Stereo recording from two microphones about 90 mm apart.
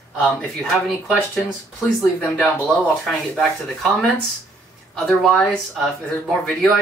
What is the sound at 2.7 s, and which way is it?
Speech, 5° left (ahead or behind).